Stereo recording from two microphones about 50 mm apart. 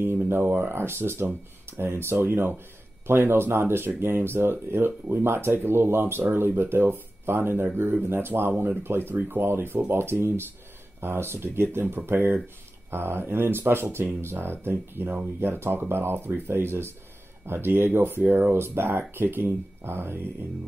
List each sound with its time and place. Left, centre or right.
0.0 s speech: right
18.6 s speech: right